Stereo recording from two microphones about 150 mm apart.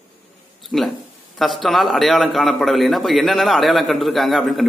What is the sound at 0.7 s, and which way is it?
A man's voice, centre (ahead or behind).